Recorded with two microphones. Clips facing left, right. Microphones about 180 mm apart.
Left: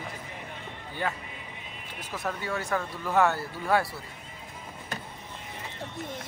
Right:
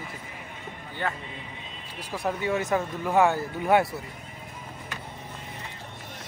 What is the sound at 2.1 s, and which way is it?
Speech, 15° right (ahead or behind).